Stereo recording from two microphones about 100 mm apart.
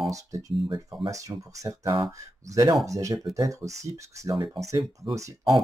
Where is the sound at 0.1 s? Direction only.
35° right (ahead or behind).